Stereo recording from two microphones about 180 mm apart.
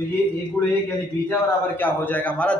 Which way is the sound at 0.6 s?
20° left (ahead or behind).